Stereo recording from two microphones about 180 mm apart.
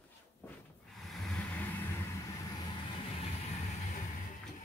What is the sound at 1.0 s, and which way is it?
Vehicle, centre (ahead or behind).